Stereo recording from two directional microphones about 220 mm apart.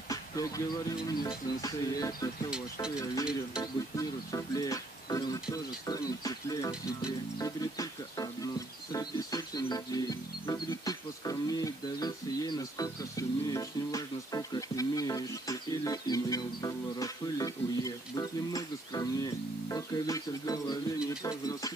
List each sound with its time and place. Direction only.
0.1 s speech: 15° left (ahead or behind)
3.9 s speech: 15° left (ahead or behind)